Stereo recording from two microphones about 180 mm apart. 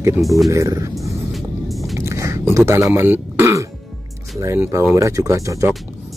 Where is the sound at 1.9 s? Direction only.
15° right (ahead or behind).